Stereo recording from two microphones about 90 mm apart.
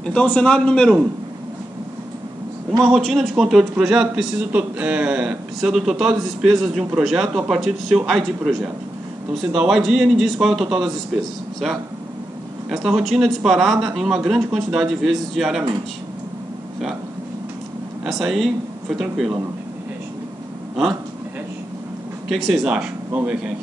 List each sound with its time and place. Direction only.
0.0 s a man's voice: 10° left (ahead or behind)
2.8 s a man's voice: 5° left (ahead or behind)
12.6 s a man's voice: 5° right (ahead or behind)
18.0 s a man's voice: 5° right (ahead or behind)
22.3 s speech: 5° right (ahead or behind)